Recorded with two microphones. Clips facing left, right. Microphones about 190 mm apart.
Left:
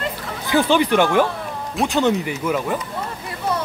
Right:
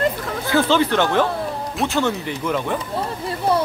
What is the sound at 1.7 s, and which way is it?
Speech, centre (ahead or behind).